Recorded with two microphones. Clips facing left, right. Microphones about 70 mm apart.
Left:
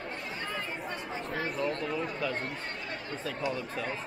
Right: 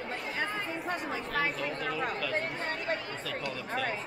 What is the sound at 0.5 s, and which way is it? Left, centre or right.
Speech, right.